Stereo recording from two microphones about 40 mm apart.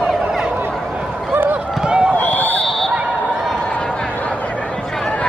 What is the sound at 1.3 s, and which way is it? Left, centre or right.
Run, right.